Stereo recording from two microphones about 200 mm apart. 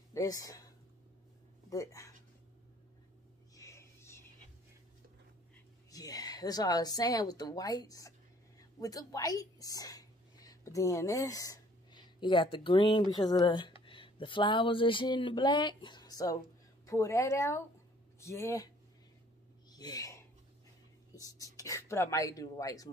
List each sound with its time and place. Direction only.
0.1 s speech: 15° left (ahead or behind)
1.7 s speech: 15° left (ahead or behind)
3.5 s a sound: 15° left (ahead or behind)
5.9 s a woman's voice: 20° left (ahead or behind)
19.7 s a sound: 20° left (ahead or behind)
21.1 s speech: 15° left (ahead or behind)